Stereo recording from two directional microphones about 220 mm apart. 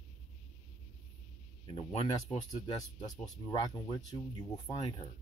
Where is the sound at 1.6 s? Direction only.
30° left (ahead or behind).